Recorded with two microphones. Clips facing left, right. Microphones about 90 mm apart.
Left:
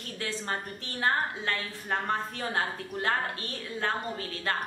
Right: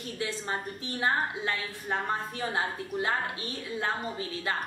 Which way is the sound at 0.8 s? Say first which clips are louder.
Even; 15° right (ahead or behind).